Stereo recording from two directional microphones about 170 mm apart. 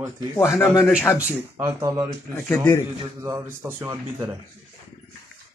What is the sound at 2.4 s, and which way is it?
Speech, 15° left (ahead or behind).